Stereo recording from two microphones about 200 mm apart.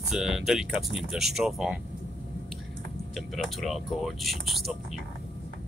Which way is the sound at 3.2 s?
Centre (ahead or behind).